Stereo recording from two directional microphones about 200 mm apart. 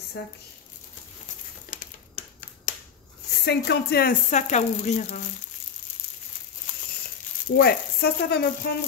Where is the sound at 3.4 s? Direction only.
55° left (ahead or behind); by 5.2 s 35° left (ahead or behind).